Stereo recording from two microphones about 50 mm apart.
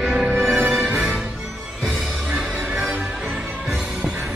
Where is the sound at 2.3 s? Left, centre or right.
Centre.